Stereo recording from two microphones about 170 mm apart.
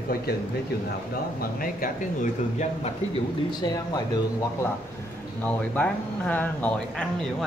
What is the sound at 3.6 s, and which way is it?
Speech, 25° left (ahead or behind).